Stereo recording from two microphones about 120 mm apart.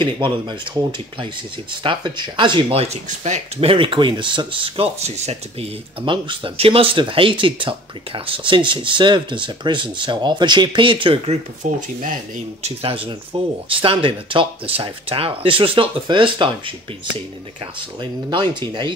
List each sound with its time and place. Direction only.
0.0 s speech: 40° right (ahead or behind)
1.8 s speech: 40° right (ahead or behind)
2.8 s speech: 70° right (ahead or behind)
3.6 s speech: 45° right (ahead or behind); by 5.7 s 65° right (ahead or behind)
6.0 s speech: 45° right (ahead or behind)
11.6 s speech: 90° right
12.6 s speech: 50° right (ahead or behind)
18.3 s speech: 40° right (ahead or behind)